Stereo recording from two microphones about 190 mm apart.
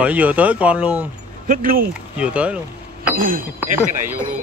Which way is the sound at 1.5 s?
50° right (ahead or behind).